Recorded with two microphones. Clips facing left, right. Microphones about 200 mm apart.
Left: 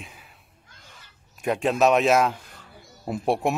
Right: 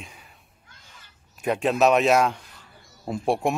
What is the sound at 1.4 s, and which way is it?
A man's voice, centre (ahead or behind).